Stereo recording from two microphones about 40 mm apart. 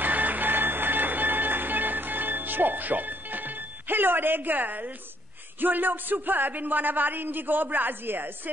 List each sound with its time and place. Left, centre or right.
0.0 s music: right
5.6 s a man's voice: right